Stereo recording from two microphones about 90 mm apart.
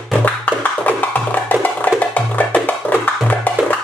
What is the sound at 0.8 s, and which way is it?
Music, 20° left (ahead or behind).